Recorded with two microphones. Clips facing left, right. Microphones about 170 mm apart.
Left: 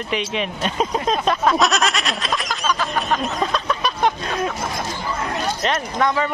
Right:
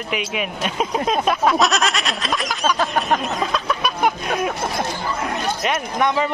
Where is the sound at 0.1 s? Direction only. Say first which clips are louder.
Left 1 dB; 5° right (ahead or behind).